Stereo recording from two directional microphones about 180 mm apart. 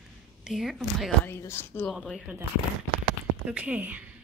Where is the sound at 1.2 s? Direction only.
15° left (ahead or behind).